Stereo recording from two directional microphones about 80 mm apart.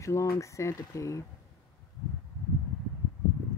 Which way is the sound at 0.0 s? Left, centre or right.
Left.